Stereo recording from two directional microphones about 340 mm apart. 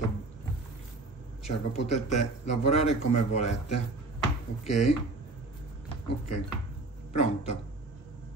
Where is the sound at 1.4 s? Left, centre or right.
Centre.